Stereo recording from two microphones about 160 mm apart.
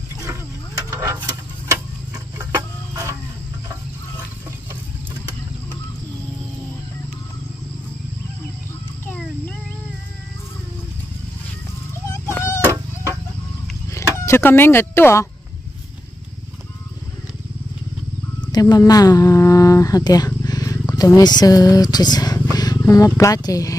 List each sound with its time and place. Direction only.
0.8 s tick-tock: 20° right (ahead or behind)
12.1 s a sound: 15° left (ahead or behind)
14.2 s speech: 15° left (ahead or behind)
18.4 s speech: 25° left (ahead or behind)